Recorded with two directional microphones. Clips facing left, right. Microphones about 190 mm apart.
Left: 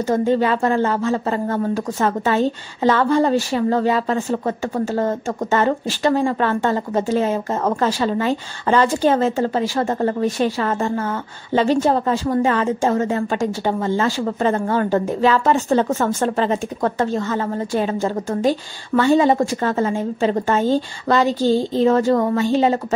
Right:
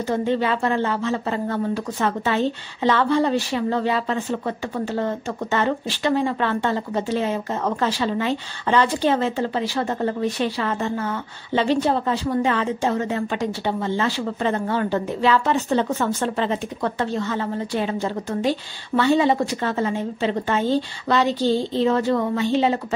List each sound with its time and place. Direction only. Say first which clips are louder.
0.0 s speech: left 4 dB; 45° left (ahead or behind)